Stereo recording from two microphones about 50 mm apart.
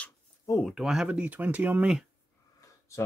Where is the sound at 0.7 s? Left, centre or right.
Centre.